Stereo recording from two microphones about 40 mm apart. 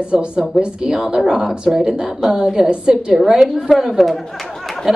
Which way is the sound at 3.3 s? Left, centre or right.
Centre.